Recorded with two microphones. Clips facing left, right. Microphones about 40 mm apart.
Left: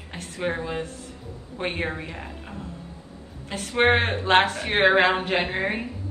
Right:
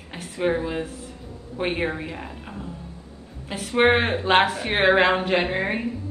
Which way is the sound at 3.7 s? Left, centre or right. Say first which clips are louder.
Right 2 dB; centre.